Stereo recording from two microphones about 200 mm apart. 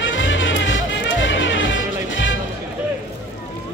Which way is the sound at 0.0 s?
70° left (ahead or behind).